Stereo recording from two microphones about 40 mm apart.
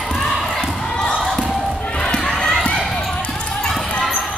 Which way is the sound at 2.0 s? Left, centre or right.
Centre.